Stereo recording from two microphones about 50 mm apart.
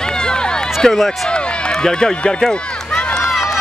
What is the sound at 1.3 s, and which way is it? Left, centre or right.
Run, centre.